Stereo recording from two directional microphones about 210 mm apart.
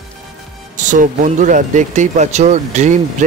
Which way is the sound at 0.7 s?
40° right (ahead or behind).